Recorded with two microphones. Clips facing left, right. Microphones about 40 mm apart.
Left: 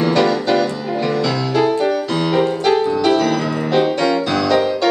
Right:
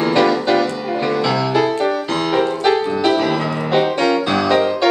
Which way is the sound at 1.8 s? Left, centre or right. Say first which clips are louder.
Left 1 dB; centre.